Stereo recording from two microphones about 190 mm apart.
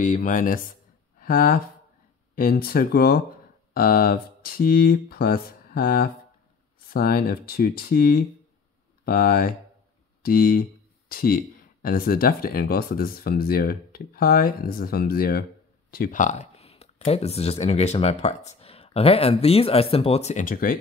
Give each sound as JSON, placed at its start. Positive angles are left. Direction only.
{"t": 0.0, "sound": "speech", "side_deg": 40}